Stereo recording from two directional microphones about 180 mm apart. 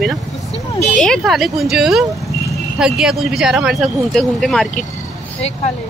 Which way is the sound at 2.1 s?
Centre (ahead or behind).